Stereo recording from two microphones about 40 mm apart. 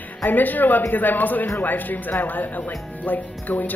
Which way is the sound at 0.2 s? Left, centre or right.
Left.